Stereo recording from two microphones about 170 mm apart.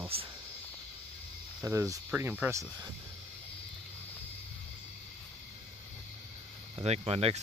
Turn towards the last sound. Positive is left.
turn(degrees=-35)  # may be behind; listen again after turning